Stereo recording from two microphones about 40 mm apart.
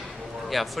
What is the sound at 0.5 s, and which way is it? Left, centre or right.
Speech, centre.